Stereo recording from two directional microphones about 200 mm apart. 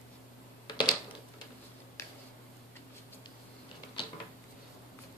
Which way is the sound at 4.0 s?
25° left (ahead or behind).